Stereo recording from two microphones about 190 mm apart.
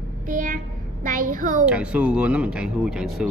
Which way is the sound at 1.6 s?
5° right (ahead or behind).